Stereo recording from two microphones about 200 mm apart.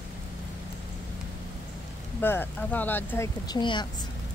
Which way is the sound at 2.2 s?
10° left (ahead or behind).